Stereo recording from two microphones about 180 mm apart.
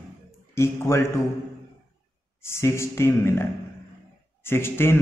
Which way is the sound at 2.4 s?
15° left (ahead or behind).